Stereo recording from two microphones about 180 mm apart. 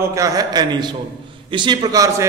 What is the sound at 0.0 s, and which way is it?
A man's voice, 15° right (ahead or behind).